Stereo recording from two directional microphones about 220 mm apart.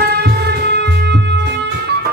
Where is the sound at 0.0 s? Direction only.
45° right (ahead or behind).